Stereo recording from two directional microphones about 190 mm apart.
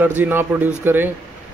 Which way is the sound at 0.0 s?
10° right (ahead or behind).